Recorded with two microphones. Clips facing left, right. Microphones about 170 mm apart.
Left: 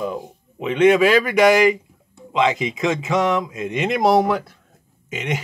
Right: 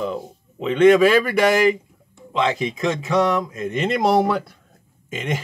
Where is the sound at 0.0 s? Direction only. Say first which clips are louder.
Even; 15° left (ahead or behind).